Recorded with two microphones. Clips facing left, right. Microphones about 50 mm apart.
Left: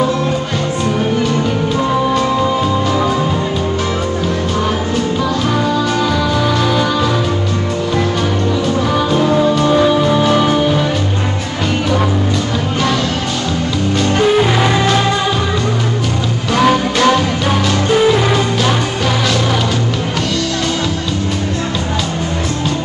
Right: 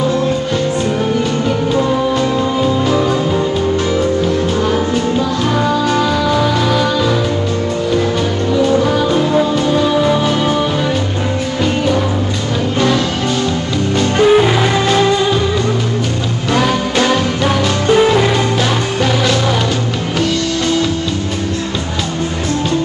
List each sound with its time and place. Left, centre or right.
8.6 s music: centre
13.9 s music: centre
17.9 s music: centre